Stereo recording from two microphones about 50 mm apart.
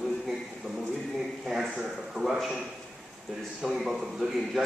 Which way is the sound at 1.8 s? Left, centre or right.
Centre.